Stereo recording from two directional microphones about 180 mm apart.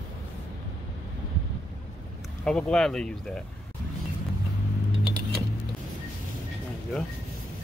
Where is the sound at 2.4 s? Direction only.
5° left (ahead or behind).